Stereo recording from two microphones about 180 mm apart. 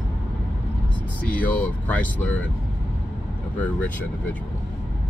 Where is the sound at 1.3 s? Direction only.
10° left (ahead or behind).